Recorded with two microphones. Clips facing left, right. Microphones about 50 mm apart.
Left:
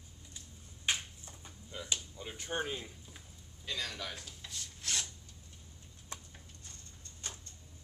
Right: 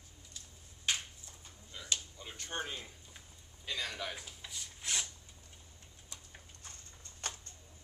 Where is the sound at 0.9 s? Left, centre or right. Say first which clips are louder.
Left 1 dB; centre.